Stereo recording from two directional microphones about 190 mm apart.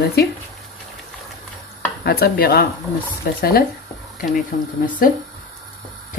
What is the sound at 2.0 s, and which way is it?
Speech, 55° left (ahead or behind).